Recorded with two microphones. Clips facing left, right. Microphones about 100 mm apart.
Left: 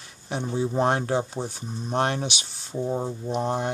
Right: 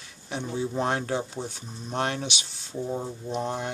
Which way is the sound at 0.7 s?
40° left (ahead or behind).